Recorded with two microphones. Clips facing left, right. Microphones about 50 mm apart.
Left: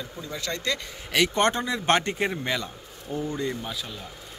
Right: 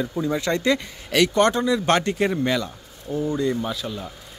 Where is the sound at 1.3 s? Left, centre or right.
Left.